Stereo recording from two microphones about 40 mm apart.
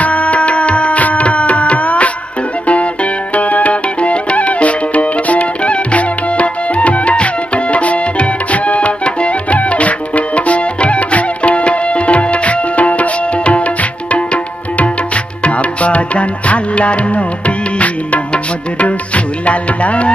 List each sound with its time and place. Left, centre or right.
0.0 s music: left